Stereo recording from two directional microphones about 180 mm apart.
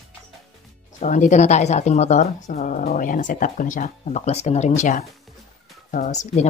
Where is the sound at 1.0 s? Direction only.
45° left (ahead or behind).